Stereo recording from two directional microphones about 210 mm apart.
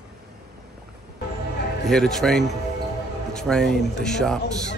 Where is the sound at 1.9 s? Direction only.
Centre (ahead or behind).